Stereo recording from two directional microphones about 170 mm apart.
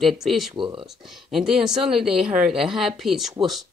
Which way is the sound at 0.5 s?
30° right (ahead or behind).